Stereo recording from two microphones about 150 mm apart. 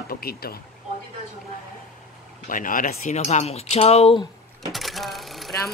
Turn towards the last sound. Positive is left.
turn(degrees=0)  # may be behind; listen again after turning